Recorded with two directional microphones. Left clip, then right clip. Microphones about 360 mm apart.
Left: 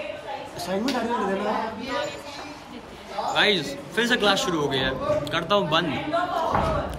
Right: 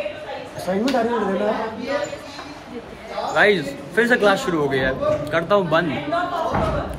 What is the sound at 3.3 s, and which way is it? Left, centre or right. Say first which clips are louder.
A man's voice: right 5 dB; centre.